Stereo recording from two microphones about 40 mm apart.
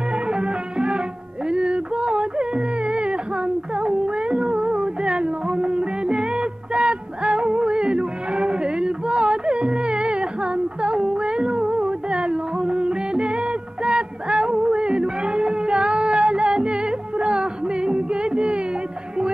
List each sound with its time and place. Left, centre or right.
0.3 s music: right